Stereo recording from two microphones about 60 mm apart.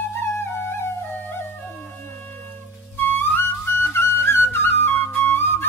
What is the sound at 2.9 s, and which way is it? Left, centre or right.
Flute, left.